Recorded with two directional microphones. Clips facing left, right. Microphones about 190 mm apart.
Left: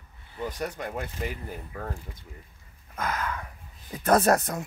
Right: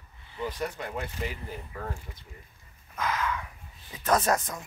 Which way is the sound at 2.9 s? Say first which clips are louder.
Right 1 dB; 50° left (ahead or behind).